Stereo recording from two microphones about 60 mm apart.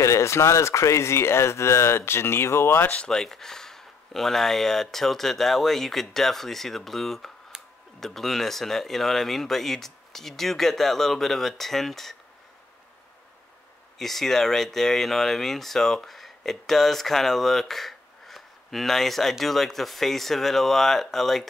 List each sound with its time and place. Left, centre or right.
0.0 s speech: left
2.9 s speech: centre
3.2 s speech: centre
13.9 s speech: centre